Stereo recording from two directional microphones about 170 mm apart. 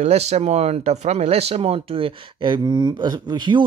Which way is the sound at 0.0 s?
40° right (ahead or behind).